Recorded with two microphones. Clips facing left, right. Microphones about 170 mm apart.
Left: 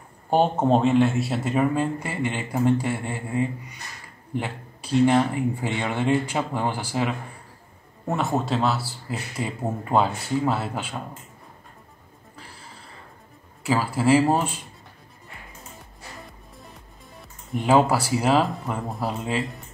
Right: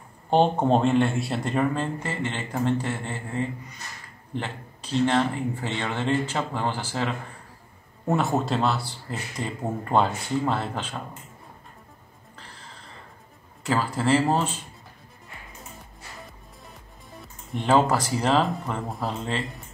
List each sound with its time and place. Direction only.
0.3 s speech: 5° left (ahead or behind)
8.1 s speech: centre (ahead or behind)
13.7 s speech: 10° left (ahead or behind)
16.3 s speech: centre (ahead or behind)